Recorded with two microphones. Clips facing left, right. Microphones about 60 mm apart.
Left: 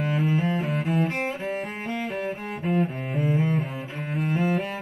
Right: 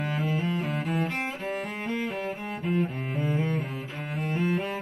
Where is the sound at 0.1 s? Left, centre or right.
Centre.